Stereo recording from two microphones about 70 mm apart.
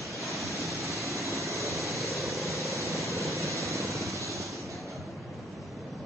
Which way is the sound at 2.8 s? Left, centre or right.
Right.